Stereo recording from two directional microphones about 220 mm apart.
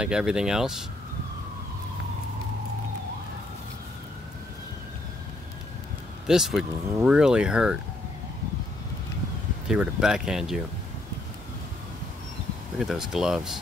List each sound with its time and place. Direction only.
0.0 s speech: 5° right (ahead or behind)
6.2 s speech: centre (ahead or behind)
9.7 s speech: 5° right (ahead or behind)
12.7 s speech: centre (ahead or behind)